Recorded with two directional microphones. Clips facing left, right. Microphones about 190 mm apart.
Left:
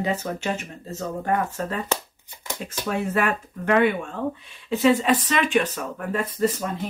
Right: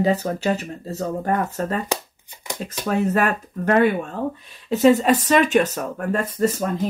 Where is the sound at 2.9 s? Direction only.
40° right (ahead or behind).